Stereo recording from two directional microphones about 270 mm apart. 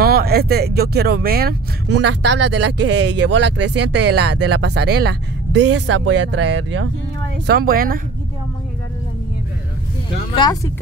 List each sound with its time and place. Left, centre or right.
0.0 s speech: right
10.3 s speech: centre